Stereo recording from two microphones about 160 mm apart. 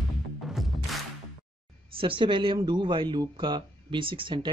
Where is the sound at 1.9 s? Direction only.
35° right (ahead or behind).